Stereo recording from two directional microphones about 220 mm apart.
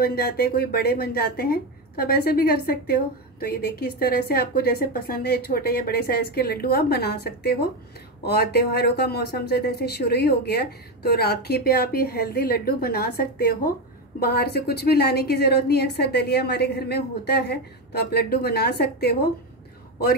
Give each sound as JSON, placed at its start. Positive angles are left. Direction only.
{"t": 0.0, "sound": "speech", "side_deg": 45}